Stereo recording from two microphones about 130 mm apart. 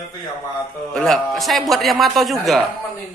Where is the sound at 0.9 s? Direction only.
Centre (ahead or behind).